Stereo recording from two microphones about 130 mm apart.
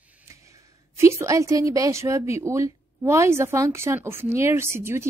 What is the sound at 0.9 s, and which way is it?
A woman's voice, 20° right (ahead or behind).